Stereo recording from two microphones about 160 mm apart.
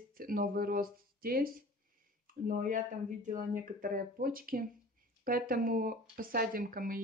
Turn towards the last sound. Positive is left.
turn(degrees=-60)  # may be behind; listen again after turning